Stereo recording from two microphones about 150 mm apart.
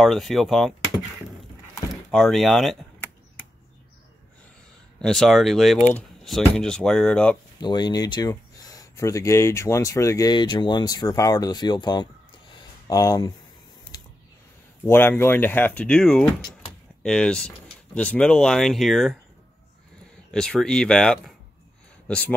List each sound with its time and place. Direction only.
0.0 s speech: centre (ahead or behind)
2.0 s speech: centre (ahead or behind)
4.9 s speech: 5° left (ahead or behind)
7.6 s speech: 30° left (ahead or behind)
12.5 s a sound: 25° left (ahead or behind)
14.9 s speech: 15° left (ahead or behind)
20.2 s speech: 5° left (ahead or behind)